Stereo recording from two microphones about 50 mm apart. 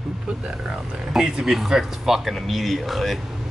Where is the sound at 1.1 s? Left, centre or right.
Centre.